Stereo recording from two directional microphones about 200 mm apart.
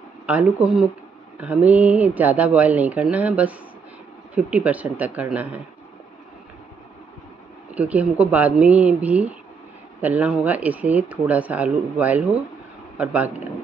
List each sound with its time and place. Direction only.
0.3 s speech: 5° right (ahead or behind)
7.7 s speech: 5° right (ahead or behind)